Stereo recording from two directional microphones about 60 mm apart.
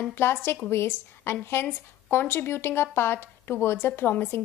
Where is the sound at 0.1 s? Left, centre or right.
Left.